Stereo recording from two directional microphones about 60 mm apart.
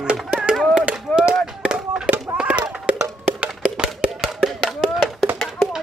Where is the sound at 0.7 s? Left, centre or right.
Centre.